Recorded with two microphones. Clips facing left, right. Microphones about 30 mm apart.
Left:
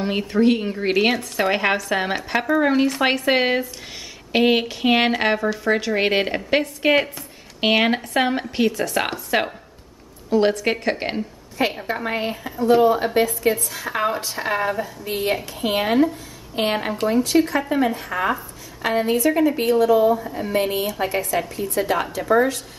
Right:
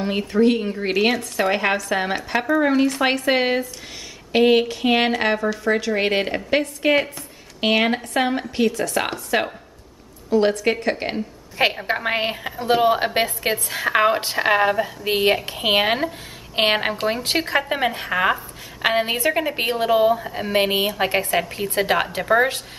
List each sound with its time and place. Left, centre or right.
0.0 s speech: centre
11.8 s a woman's voice: right
15.0 s a woman's voice: right